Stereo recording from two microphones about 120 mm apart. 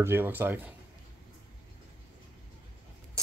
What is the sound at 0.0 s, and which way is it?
Speech, 20° right (ahead or behind).